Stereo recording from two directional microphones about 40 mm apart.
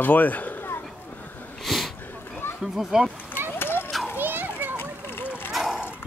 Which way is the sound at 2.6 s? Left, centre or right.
Centre.